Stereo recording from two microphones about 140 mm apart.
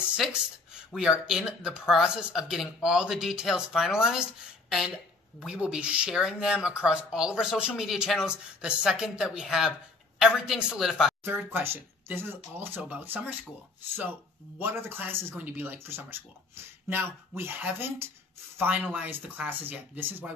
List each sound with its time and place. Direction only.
0.0 s speech: 5° right (ahead or behind)
11.2 s speech: 15° right (ahead or behind)
14.6 s speech: 15° right (ahead or behind)
17.4 s speech: 15° right (ahead or behind)